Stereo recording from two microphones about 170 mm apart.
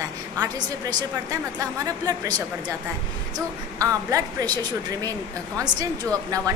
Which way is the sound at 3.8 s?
20° right (ahead or behind).